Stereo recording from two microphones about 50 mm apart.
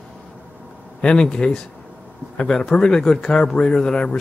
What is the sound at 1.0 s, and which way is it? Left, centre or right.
Speech, centre.